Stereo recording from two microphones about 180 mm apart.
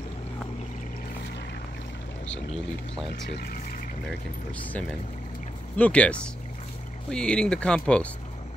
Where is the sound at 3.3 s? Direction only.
55° left (ahead or behind).